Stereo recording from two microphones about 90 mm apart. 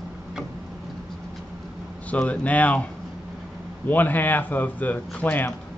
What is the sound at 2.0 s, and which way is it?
A man's voice, 15° left (ahead or behind).